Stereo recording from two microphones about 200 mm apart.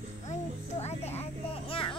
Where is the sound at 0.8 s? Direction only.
30° left (ahead or behind).